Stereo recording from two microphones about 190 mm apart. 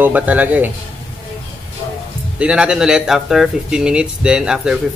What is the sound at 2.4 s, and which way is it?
Speech, 5° right (ahead or behind).